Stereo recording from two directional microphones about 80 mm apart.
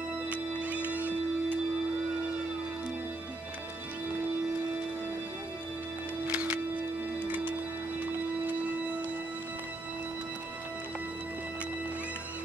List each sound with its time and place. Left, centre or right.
0.3 s music: centre
6.2 s music: centre